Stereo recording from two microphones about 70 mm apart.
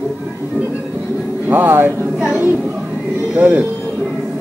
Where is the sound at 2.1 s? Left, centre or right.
Centre.